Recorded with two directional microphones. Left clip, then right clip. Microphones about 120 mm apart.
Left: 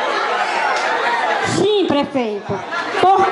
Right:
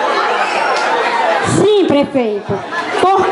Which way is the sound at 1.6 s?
10° left (ahead or behind).